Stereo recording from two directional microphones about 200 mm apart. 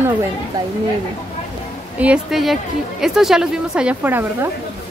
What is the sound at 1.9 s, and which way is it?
A woman's voice, 5° right (ahead or behind).